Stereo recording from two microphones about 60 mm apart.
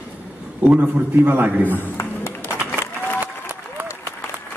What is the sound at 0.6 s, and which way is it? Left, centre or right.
A man's voice, right.